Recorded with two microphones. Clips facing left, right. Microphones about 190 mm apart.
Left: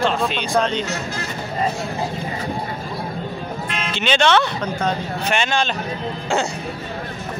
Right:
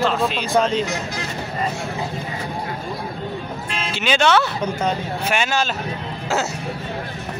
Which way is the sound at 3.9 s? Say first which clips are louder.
Even; 5° right (ahead or behind).